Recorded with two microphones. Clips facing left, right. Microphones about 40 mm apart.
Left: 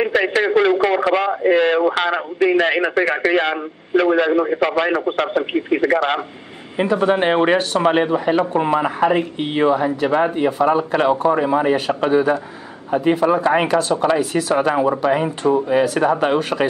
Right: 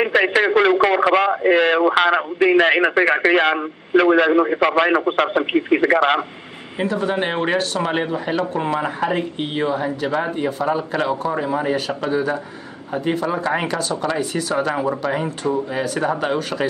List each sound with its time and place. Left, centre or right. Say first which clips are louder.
0.0 s a sound: right 1 dB; centre
0.8 s a man's voice: right 1 dB; centre
6.8 s a man's voice: left 4 dB; left
10.0 s a man's voice: left 5 dB; centre